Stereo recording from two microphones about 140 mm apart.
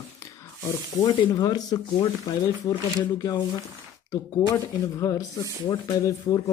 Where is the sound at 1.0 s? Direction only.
35° left (ahead or behind).